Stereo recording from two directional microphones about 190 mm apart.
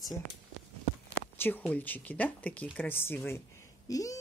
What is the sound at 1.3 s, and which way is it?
Speech, 10° left (ahead or behind).